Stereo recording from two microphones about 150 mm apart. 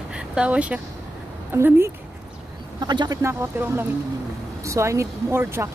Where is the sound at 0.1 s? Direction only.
5° right (ahead or behind).